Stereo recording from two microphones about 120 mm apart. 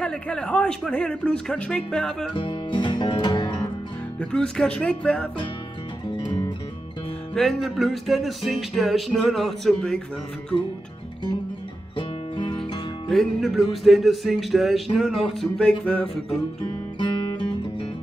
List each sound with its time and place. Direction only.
0.0 s speech: 5° left (ahead or behind)
2.3 s music: 40° left (ahead or behind)
4.2 s speech: 5° left (ahead or behind)
6.2 s music: 35° left (ahead or behind)
7.3 s music: centre (ahead or behind)
12.0 s music: 40° left (ahead or behind)
13.1 s music: centre (ahead or behind)
15.8 s speech: 10° left (ahead or behind)